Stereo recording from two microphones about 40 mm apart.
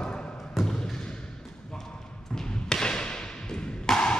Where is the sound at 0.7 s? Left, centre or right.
Centre.